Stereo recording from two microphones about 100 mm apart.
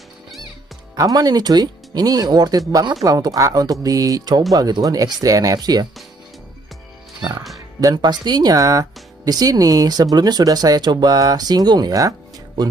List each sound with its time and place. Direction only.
0.9 s speech: 35° right (ahead or behind)
7.2 s speech: 40° right (ahead or behind)